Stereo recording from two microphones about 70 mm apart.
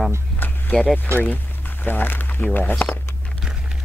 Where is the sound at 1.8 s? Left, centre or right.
Left.